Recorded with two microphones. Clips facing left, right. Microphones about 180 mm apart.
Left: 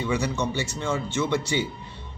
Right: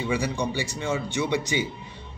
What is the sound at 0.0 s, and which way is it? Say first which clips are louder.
A man's voice: even; 10° right (ahead or behind).